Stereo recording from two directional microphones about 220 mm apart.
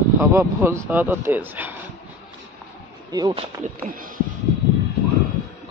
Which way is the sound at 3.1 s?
20° right (ahead or behind).